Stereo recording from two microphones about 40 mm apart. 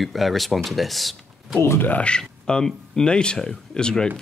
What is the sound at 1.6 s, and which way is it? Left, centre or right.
Speech, left.